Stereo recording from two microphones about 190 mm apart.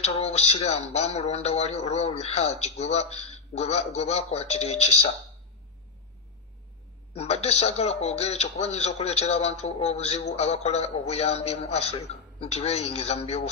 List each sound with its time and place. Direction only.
0.0 s speech: 35° left (ahead or behind)
7.2 s speech: 35° left (ahead or behind)